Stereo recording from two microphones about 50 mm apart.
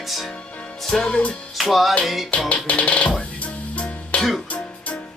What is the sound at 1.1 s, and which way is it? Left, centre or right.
Music, left.